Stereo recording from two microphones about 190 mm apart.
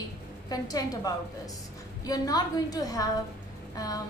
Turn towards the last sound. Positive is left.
turn(degrees=20)  # may be behind; listen again after turning